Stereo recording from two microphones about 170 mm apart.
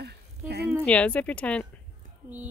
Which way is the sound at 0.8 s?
10° left (ahead or behind).